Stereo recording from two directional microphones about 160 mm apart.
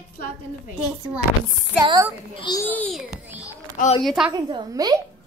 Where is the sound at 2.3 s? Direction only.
30° left (ahead or behind).